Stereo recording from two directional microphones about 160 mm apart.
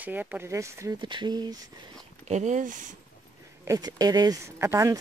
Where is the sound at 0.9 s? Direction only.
30° right (ahead or behind).